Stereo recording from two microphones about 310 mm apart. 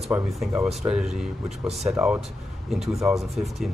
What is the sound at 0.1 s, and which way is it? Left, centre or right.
Speech, centre.